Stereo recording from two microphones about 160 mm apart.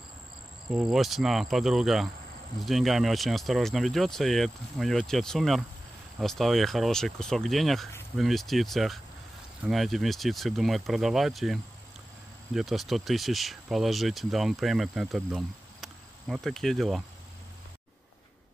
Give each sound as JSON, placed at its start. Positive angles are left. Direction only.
{"t": 0.7, "sound": "speech", "side_deg": 0}